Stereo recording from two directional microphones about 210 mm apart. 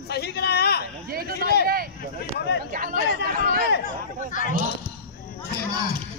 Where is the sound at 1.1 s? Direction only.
45° right (ahead or behind).